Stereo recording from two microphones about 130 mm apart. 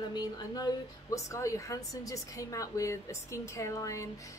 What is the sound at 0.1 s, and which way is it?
A woman's voice, 30° left (ahead or behind).